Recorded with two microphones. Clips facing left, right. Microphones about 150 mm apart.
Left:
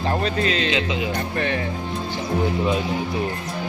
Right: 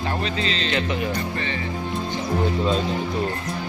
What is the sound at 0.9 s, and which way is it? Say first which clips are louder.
Speech: left 1 dB; 60° left (ahead or behind).